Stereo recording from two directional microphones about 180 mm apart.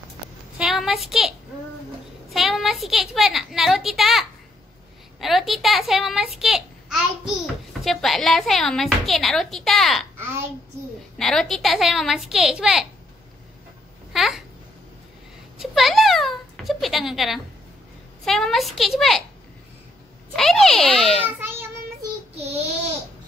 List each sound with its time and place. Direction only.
0.6 s a sound: centre (ahead or behind)
2.3 s a woman's voice: centre (ahead or behind)
11.1 s a woman's voice: centre (ahead or behind)
14.1 s speech: centre (ahead or behind)
15.5 s a child's voice: centre (ahead or behind)
20.3 s a woman's voice: centre (ahead or behind)
21.4 s child singing: 15° right (ahead or behind)
22.3 s speech: 35° right (ahead or behind)